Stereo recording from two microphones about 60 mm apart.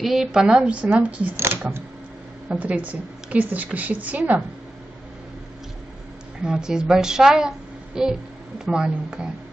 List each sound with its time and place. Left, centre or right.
0.0 s a woman's voice: centre; by 1.3 s right
1.3 s speech: right
2.5 s a woman's voice: right
6.4 s a woman's voice: centre